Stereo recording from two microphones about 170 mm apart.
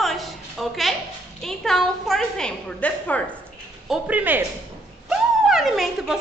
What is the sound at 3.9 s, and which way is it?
A woman's voice, 10° right (ahead or behind).